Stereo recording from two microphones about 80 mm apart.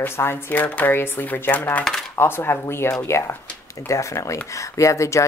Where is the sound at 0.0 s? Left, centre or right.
Left.